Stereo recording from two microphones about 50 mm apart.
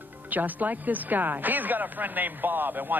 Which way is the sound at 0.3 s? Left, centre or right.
Right.